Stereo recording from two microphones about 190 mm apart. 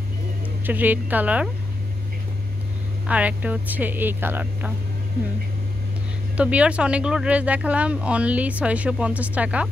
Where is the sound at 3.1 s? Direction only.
5° right (ahead or behind).